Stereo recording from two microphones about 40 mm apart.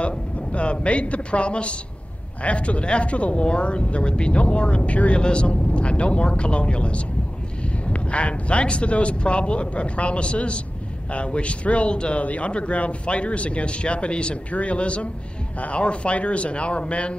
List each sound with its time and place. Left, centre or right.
0.0 s a woman's voice: left